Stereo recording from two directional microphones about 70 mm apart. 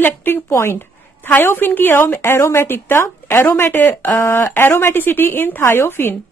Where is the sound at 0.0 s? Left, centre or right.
Left.